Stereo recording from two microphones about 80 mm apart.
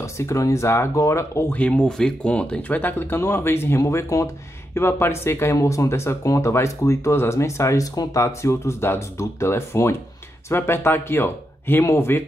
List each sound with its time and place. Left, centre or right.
0.0 s speech: left
1.5 s speech: centre; by 8.2 s left
8.2 s speech: left